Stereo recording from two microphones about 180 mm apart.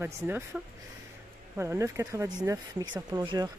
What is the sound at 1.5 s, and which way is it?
Speech, 15° right (ahead or behind).